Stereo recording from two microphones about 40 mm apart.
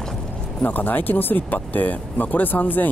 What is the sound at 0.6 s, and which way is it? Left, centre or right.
Speech, left.